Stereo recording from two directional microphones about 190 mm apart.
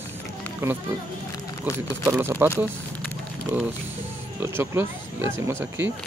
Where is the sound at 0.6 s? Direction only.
10° right (ahead or behind).